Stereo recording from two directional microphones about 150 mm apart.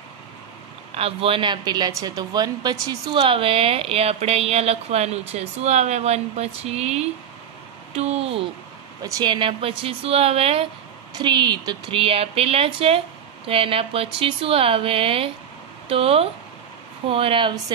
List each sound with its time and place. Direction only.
0.9 s a woman's voice: 40° right (ahead or behind)
9.0 s a woman's voice: 30° right (ahead or behind)
11.1 s a woman's voice: 30° right (ahead or behind)